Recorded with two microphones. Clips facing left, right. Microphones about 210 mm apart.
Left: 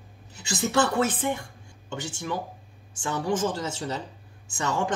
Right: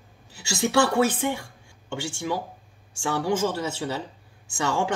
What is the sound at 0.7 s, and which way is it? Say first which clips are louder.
A man's voice: right 3 dB; 10° right (ahead or behind).